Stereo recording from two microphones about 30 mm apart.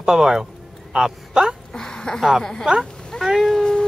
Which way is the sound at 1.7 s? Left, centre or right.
Left.